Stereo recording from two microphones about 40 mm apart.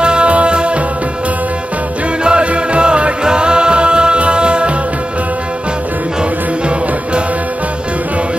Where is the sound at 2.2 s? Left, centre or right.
Right.